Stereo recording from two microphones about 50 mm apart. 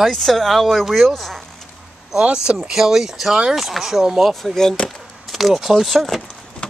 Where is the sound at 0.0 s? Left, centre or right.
Centre.